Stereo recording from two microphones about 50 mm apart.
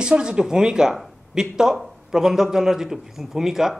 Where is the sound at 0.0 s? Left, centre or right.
Centre.